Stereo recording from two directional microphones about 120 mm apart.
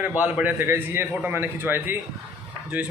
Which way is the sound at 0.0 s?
10° right (ahead or behind).